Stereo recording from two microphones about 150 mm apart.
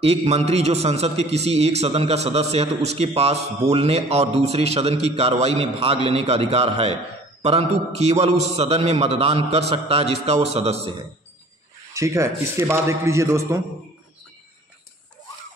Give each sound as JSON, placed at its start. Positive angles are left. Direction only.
{"t": 0.0, "sound": "a man's voice", "side_deg": -45}
{"t": 11.9, "sound": "a man's voice", "side_deg": -20}